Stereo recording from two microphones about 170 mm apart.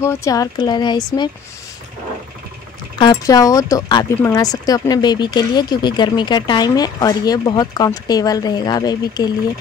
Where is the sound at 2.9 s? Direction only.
25° left (ahead or behind).